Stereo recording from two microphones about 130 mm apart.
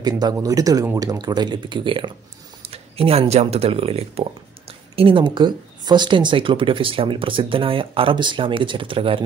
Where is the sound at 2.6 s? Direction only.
50° right (ahead or behind).